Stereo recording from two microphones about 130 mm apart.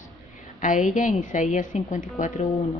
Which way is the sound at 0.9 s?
85° left.